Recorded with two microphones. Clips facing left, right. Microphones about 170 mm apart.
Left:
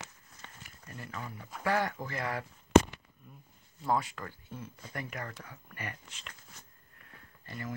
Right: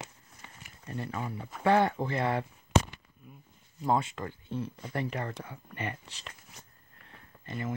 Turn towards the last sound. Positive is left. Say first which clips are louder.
# right 5 dB
turn(degrees=-20)  # may be behind; listen again after turning